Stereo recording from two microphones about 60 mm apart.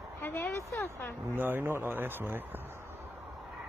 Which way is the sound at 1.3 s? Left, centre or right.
Right.